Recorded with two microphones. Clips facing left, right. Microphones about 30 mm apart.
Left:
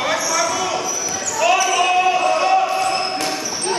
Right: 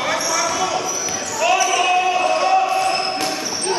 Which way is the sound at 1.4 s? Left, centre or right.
Centre.